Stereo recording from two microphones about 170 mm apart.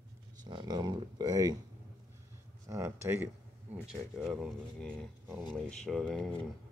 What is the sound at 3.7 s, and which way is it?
Speech, 5° right (ahead or behind).